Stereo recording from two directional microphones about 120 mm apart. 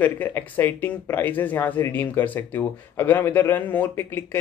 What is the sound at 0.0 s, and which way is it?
Speech, 15° left (ahead or behind).